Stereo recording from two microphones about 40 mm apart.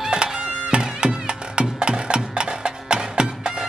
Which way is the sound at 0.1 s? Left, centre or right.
Right.